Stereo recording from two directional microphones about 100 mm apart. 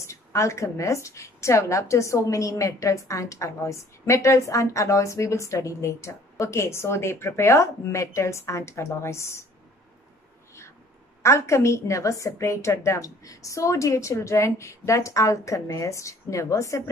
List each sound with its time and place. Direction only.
0.0 s a woman's voice: 30° left (ahead or behind)
11.2 s a woman's voice: 30° left (ahead or behind)